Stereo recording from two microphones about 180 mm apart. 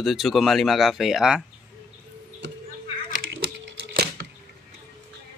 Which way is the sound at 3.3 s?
70° right (ahead or behind).